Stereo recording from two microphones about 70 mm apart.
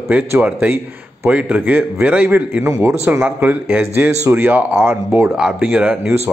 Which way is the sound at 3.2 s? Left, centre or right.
Right.